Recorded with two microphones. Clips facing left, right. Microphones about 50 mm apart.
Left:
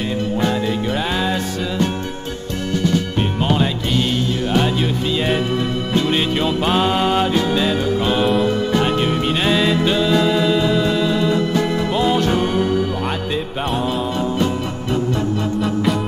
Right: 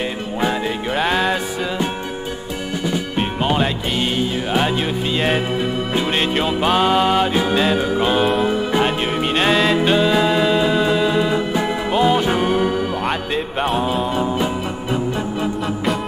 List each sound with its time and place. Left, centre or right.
0.4 s music: centre
5.9 s music: centre